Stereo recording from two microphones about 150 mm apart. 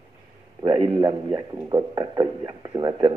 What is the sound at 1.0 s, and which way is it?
Speech, 25° right (ahead or behind).